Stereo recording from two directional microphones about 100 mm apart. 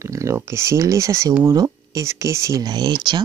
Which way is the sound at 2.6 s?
45° right (ahead or behind).